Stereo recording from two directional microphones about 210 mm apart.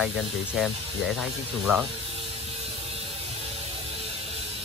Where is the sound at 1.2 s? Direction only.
5° right (ahead or behind).